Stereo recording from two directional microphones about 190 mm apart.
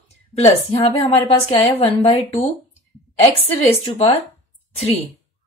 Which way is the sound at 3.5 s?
30° left (ahead or behind).